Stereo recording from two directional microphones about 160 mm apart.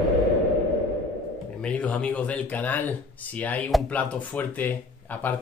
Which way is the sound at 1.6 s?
10° left (ahead or behind).